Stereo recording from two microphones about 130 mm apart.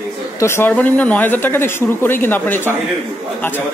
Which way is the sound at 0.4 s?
20° left (ahead or behind).